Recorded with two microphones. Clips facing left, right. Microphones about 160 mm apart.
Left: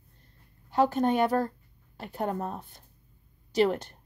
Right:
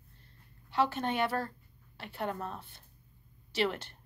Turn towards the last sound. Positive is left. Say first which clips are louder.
# left 7 dB
turn(degrees=40)  # may be behind; listen again after turning